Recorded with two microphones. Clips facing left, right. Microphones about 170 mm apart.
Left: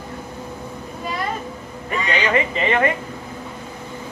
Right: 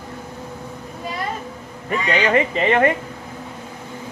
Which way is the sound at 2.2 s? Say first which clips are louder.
Right 3 dB; 45° right (ahead or behind).